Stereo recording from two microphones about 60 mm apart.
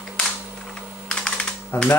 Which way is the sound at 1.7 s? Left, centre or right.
Left.